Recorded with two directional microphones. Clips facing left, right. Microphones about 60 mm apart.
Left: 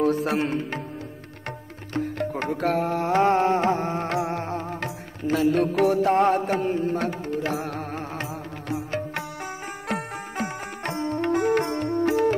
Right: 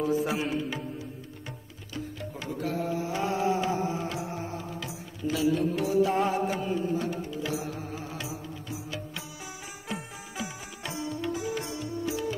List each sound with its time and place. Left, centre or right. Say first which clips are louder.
0.0 s speech: left 5 dB; left
2.0 s music: left 11 dB; left